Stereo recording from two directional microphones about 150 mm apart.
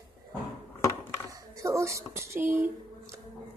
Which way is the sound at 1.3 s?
20° right (ahead or behind).